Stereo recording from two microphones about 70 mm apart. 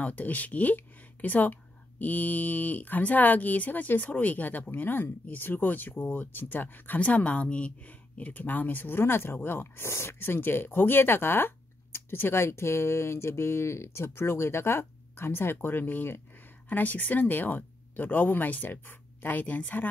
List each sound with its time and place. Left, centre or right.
0.0 s speech: left